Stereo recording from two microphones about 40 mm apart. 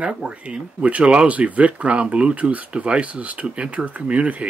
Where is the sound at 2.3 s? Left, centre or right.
Right.